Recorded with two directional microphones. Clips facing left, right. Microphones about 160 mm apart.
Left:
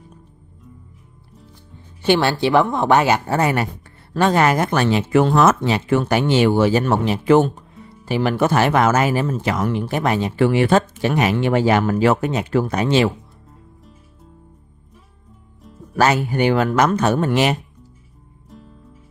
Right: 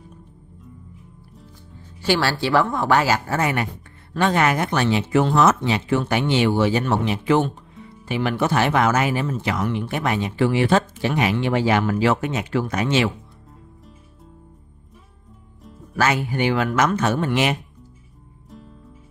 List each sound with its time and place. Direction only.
2.0 s speech: 20° left (ahead or behind)
3.3 s speech: 35° left (ahead or behind)
10.4 s speech: 55° left (ahead or behind); by 13.1 s 35° left (ahead or behind)
16.0 s speech: 40° left (ahead or behind)